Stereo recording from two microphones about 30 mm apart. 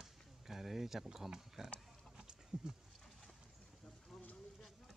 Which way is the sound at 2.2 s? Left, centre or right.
Right.